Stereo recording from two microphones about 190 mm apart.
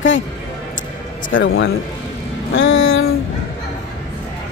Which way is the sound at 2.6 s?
90° left.